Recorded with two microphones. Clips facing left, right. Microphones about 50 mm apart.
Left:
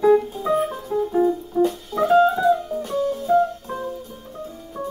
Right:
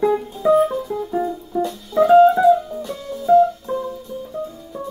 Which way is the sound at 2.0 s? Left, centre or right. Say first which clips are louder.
Right 5 dB; right.